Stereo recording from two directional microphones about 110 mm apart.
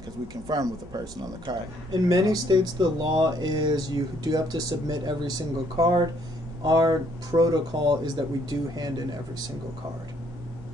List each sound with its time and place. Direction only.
0.3 s speech: 35° right (ahead or behind)